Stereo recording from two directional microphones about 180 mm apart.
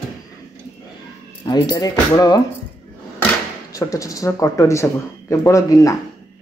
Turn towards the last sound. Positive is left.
turn(degrees=20)  # may be behind; listen again after turning